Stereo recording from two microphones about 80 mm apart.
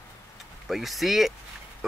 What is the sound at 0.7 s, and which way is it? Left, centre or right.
Speech, centre.